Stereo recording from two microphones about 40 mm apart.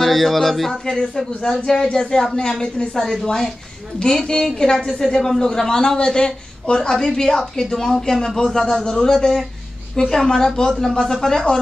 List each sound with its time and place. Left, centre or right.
0.0 s a woman's voice: centre